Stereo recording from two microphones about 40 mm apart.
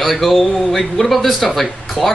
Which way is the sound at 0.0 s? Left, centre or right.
Centre.